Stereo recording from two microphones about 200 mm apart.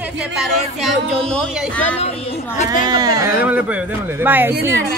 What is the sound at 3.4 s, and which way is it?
A man's voice, 5° right (ahead or behind).